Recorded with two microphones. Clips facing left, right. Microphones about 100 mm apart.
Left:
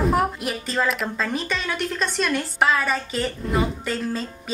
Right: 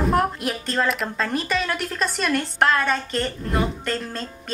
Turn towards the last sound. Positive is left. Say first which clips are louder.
# left 2 dB
turn(degrees=5)  # may be behind; listen again after turning